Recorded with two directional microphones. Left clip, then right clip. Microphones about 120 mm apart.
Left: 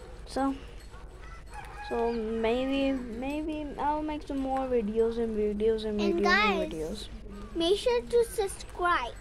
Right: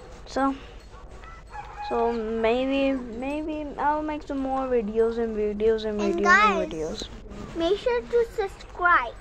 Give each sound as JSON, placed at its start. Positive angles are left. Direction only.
{"t": 0.3, "sound": "speech", "side_deg": 10}
{"t": 1.8, "sound": "speech", "side_deg": 10}
{"t": 6.2, "sound": "a child's voice", "side_deg": 30}
{"t": 6.7, "sound": "speech", "side_deg": 5}
{"t": 7.7, "sound": "speech", "side_deg": 30}